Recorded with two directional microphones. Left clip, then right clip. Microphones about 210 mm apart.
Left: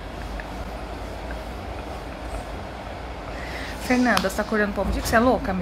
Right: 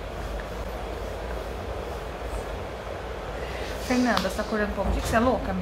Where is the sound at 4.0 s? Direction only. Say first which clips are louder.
Left 3 dB; 25° left (ahead or behind).